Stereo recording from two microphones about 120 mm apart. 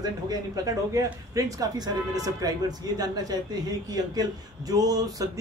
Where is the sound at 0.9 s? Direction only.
30° right (ahead or behind).